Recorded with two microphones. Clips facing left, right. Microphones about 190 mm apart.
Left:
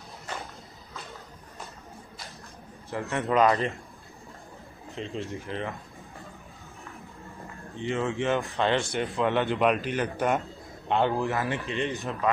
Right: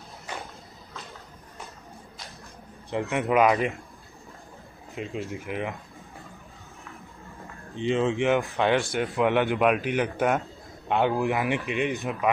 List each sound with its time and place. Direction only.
2.9 s speech: 15° right (ahead or behind)
4.9 s speech: 15° right (ahead or behind)
7.7 s speech: 20° right (ahead or behind)
8.7 s speech: centre (ahead or behind)
9.1 s speech: 15° right (ahead or behind)
10.2 s a sound: 5° right (ahead or behind)
11.0 s speech: 15° right (ahead or behind)